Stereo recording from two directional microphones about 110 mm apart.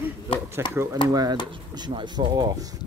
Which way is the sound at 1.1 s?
35° right (ahead or behind).